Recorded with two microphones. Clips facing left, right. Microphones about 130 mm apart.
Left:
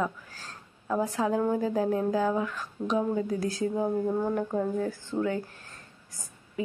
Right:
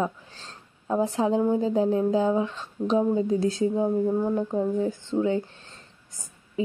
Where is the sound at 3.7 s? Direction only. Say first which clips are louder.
Right 4 dB; 10° right (ahead or behind).